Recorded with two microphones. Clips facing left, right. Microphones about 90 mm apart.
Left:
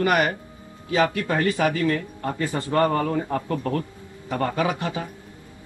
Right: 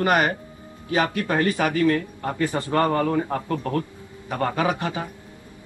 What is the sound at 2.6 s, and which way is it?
Speech, 25° left (ahead or behind).